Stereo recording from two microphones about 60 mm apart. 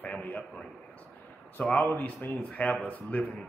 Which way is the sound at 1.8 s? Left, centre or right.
Left.